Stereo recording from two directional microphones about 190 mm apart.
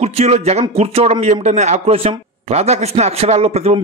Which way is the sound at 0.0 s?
35° right (ahead or behind).